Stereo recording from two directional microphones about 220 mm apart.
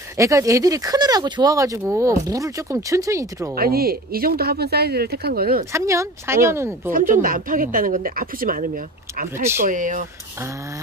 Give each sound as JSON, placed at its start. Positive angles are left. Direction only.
{"t": 0.2, "sound": "speech", "side_deg": -15}
{"t": 3.5, "sound": "speech", "side_deg": -45}
{"t": 5.7, "sound": "speech", "side_deg": -15}
{"t": 6.9, "sound": "speech", "side_deg": -40}